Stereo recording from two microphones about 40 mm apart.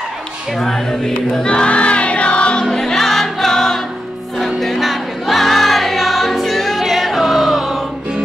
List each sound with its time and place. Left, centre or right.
0.6 s speech: centre
1.4 s music: left
2.7 s music: centre